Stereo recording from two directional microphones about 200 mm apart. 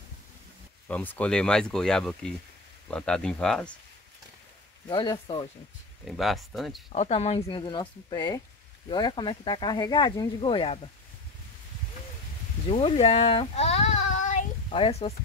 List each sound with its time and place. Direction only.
0.8 s speech: 5° left (ahead or behind)
4.8 s speech: 20° left (ahead or behind)
6.0 s speech: centre (ahead or behind)
6.9 s speech: 30° left (ahead or behind)
12.6 s speech: 30° left (ahead or behind)